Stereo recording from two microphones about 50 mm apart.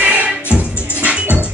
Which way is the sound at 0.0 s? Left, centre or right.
Right.